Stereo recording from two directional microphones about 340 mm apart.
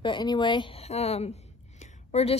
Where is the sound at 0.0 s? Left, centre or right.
Centre.